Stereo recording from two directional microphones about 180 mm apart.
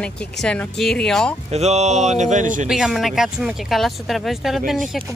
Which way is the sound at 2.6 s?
5° right (ahead or behind).